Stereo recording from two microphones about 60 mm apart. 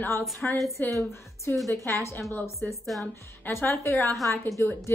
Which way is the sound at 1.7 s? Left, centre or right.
Left.